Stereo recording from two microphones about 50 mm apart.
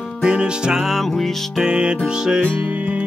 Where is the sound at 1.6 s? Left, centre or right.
Centre.